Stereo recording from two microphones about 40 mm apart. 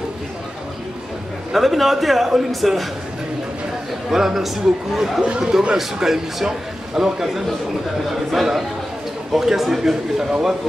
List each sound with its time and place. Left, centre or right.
1.5 s a man's voice: centre
4.1 s a man's voice: centre
5.4 s a man's voice: centre